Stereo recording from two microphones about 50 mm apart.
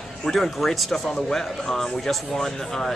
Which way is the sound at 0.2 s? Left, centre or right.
Centre.